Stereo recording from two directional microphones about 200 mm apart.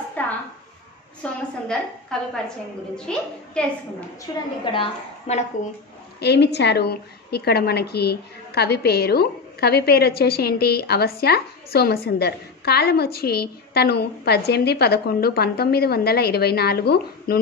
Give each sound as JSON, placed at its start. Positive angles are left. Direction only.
{"t": 0.2, "sound": "a sound", "side_deg": 10}
{"t": 1.2, "sound": "a woman's voice", "side_deg": 5}
{"t": 4.3, "sound": "a woman's voice", "side_deg": 20}
{"t": 4.7, "sound": "a woman's voice", "side_deg": 35}
{"t": 6.1, "sound": "a woman's voice", "side_deg": 55}